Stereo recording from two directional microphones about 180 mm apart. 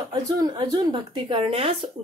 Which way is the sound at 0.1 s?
20° right (ahead or behind).